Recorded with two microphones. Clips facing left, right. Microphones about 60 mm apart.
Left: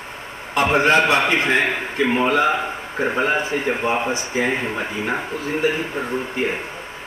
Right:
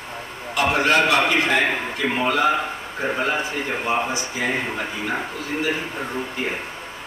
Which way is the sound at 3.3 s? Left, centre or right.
Left.